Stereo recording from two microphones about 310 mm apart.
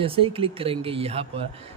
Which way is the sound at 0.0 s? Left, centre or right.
Centre.